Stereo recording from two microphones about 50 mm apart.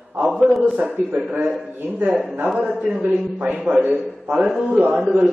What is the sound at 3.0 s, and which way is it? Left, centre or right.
A man's voice, right.